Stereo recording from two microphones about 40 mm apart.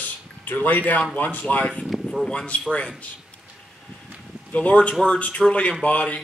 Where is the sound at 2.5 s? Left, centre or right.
Left.